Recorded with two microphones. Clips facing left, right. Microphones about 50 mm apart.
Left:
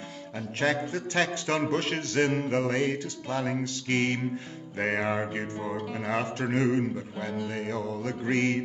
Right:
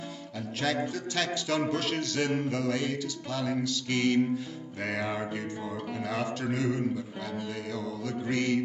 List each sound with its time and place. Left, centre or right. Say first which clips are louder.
0.4 s music: left 2 dB; left